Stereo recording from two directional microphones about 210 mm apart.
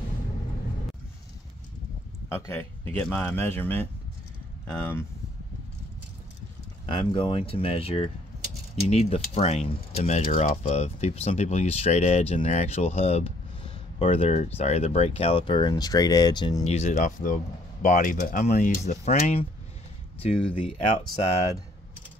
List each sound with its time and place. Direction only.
2.2 s a man's voice: 10° left (ahead or behind)
6.9 s speech: 25° left (ahead or behind)
16.6 s speech: 30° left (ahead or behind)